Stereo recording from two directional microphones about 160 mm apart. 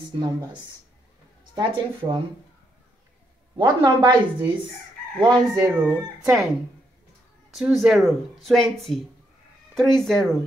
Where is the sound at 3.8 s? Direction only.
25° right (ahead or behind).